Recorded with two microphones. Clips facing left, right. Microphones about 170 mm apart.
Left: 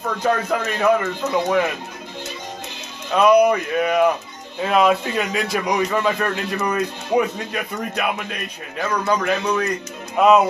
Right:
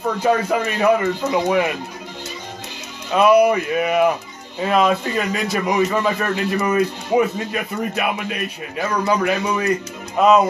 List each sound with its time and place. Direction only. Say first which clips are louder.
0.2 s speech: right 2 dB; 10° right (ahead or behind)
3.1 s a man's voice: right 1 dB; 5° right (ahead or behind)